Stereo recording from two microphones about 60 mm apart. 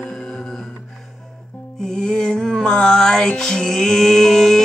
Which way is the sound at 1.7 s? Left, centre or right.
Centre.